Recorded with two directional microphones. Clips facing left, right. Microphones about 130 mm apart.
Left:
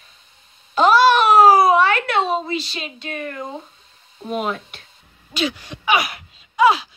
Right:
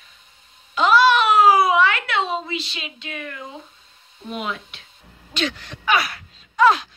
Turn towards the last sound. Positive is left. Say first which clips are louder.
# left 1 dB
turn(degrees=10)  # may be behind; listen again after turning